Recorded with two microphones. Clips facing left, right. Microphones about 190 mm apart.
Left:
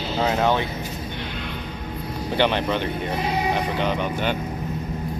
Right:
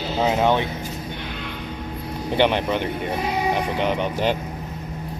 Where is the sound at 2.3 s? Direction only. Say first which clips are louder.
Right 2 dB; 15° right (ahead or behind).